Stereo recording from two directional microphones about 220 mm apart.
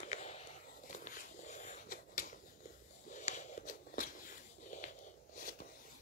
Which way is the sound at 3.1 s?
35° left (ahead or behind).